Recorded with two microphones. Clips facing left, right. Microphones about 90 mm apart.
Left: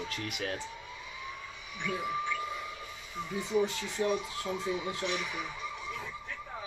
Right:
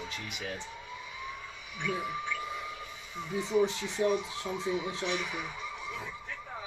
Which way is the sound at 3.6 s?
20° right (ahead or behind).